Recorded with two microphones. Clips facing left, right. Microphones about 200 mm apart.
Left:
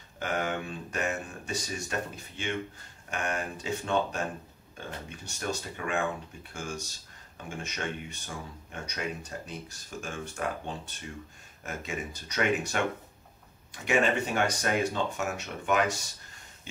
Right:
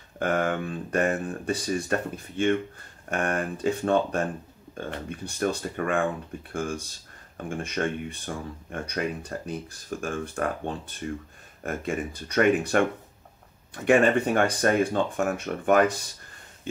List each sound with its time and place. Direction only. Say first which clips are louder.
0.2 s speech: right 6 dB; 50° right (ahead or behind)
5.3 s speech: right 7 dB; 55° right (ahead or behind)
13.8 s speech: right 7 dB; 55° right (ahead or behind)